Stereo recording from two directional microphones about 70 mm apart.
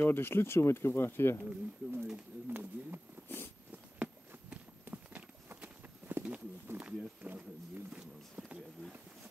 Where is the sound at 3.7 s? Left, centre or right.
Right.